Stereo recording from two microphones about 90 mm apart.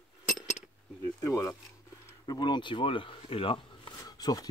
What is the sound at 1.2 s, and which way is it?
Speech, 35° left (ahead or behind).